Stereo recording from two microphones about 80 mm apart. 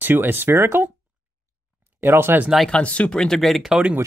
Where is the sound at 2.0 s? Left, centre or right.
Right.